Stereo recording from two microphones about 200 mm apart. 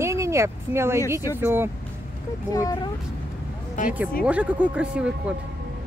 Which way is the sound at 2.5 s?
15° left (ahead or behind).